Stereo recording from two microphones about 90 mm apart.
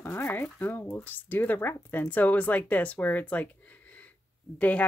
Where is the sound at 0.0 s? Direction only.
25° left (ahead or behind).